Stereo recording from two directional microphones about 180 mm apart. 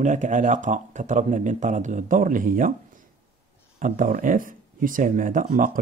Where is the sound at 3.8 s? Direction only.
50° right (ahead or behind).